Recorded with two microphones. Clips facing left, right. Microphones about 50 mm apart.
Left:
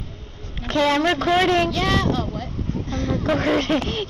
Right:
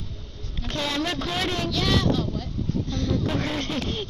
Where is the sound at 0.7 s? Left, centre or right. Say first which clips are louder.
Left 9 dB; left.